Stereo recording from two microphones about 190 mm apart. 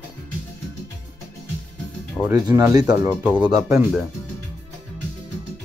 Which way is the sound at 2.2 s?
15° right (ahead or behind).